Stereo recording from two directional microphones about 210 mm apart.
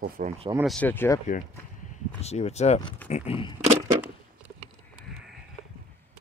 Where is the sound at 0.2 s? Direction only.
40° right (ahead or behind).